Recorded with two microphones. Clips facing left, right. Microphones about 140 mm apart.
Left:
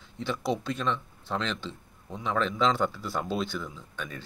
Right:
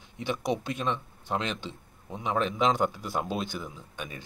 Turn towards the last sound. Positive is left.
turn(degrees=-15)  # may be behind; listen again after turning